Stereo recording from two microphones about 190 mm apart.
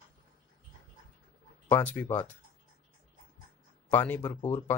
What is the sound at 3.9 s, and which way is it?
Speech, 10° left (ahead or behind).